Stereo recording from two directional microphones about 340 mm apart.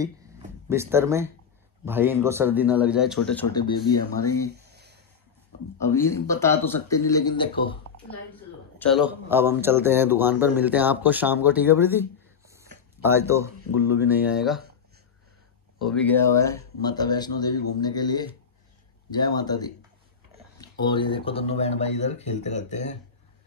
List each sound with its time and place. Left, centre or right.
0.7 s speech: centre
4.6 s a sound: right
5.8 s speech: centre
8.7 s speech: centre
15.8 s speech: centre
20.8 s speech: centre